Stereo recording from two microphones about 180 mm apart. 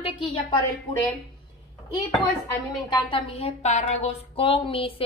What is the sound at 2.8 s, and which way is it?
Speech, 30° left (ahead or behind).